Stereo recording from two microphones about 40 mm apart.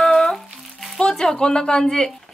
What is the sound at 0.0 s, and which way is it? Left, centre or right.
Music, centre.